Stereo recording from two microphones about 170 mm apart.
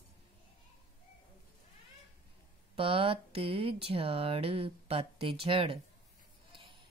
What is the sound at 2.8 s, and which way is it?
Speech, 35° right (ahead or behind).